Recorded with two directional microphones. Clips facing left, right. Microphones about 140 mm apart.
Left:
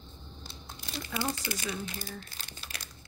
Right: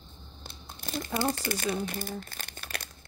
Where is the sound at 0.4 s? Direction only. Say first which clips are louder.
Right 3 dB; 55° right (ahead or behind).